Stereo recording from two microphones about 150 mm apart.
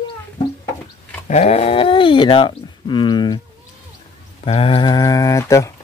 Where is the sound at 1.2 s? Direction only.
50° left (ahead or behind); by 3.4 s 30° left (ahead or behind).